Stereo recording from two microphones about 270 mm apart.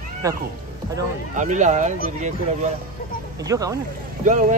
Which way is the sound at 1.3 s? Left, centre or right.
Right.